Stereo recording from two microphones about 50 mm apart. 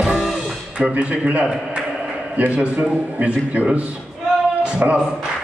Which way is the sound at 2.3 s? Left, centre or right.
Right.